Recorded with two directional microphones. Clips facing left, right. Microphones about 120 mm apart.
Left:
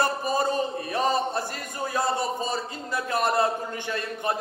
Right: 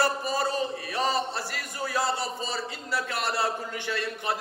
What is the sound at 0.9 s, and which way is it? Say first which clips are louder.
Speech: left 4 dB; 50° left (ahead or behind).